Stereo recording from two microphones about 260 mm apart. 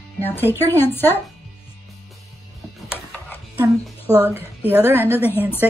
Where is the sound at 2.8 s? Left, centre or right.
Centre.